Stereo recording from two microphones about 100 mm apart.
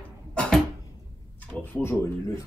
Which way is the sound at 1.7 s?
25° left (ahead or behind).